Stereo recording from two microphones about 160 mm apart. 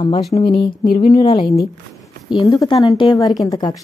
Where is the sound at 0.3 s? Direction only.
35° left (ahead or behind).